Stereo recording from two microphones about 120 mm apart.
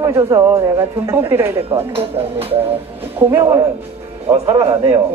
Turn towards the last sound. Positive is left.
turn(degrees=-25)  # may be behind; listen again after turning